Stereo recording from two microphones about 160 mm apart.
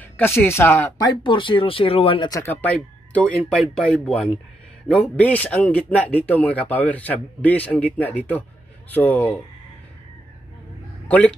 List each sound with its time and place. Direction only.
0.0 s speech: 10° left (ahead or behind); by 2.4 s 30° left (ahead or behind)
2.4 s speech: 10° left (ahead or behind)
11.1 s speech: 10° left (ahead or behind)